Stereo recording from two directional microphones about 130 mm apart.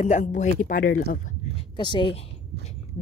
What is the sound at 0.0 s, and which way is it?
Speech, 65° left (ahead or behind).